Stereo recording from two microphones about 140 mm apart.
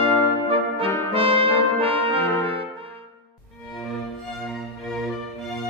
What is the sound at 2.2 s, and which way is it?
Brass instrument, 20° left (ahead or behind).